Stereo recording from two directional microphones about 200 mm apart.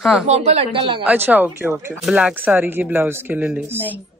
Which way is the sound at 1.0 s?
10° right (ahead or behind).